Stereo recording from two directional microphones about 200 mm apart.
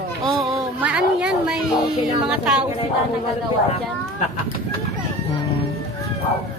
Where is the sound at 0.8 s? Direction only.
5° right (ahead or behind).